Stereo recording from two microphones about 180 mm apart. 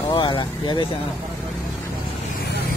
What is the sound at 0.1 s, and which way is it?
Speech, 25° left (ahead or behind).